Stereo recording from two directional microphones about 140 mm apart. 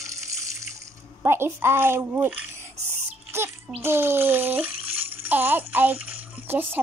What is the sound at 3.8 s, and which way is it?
Speech, 15° right (ahead or behind).